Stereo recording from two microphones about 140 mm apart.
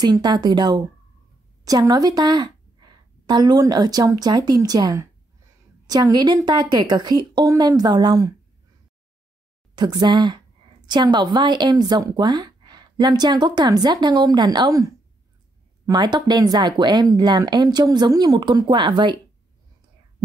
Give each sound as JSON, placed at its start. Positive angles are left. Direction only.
{"t": 0.0, "sound": "a woman's voice", "side_deg": -30}
{"t": 9.8, "sound": "a woman's voice", "side_deg": -30}
{"t": 15.9, "sound": "speech", "side_deg": -30}